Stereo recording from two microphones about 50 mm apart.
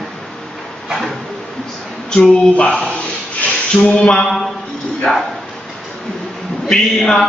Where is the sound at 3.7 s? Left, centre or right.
Centre.